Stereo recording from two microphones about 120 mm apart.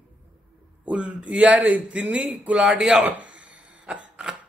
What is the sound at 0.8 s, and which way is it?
Speech, 10° right (ahead or behind).